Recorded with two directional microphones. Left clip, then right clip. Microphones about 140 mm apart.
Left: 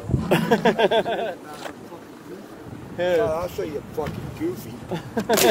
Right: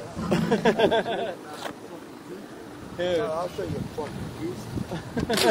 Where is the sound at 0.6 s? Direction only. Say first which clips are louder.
Left 3 dB; 45° left (ahead or behind).